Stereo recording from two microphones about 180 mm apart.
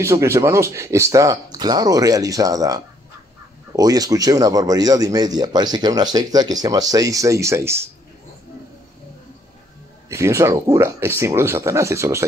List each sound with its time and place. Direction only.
0.0 s speech: 15° right (ahead or behind)
10.0 s speech: 15° right (ahead or behind)